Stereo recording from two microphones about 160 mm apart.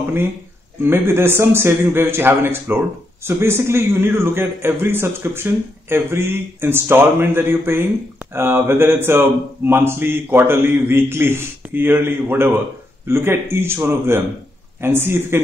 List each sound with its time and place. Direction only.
0.8 s a man's voice: 15° right (ahead or behind)